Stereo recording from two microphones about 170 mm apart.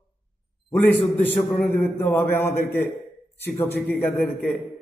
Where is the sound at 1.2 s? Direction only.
10° left (ahead or behind).